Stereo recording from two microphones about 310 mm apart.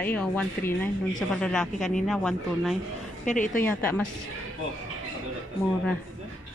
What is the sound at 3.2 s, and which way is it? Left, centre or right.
Speech, left.